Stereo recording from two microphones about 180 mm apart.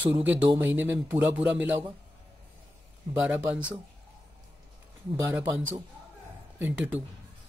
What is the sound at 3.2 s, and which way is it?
Speech, 5° right (ahead or behind).